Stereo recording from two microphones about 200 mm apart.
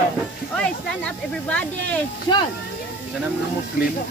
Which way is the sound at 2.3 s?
20° left (ahead or behind).